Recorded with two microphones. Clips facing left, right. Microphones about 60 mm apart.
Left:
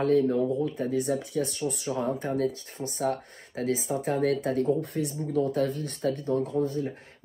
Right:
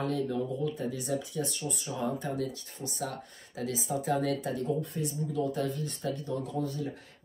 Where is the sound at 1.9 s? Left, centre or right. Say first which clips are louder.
Left 3 dB; left.